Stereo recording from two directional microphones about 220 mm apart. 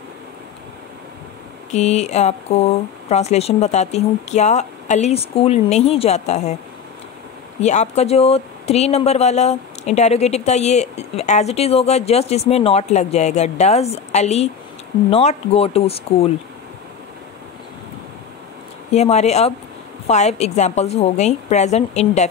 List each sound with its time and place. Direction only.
1.7 s speech: 30° left (ahead or behind)
7.6 s speech: 30° left (ahead or behind)
18.9 s a woman's voice: 30° left (ahead or behind)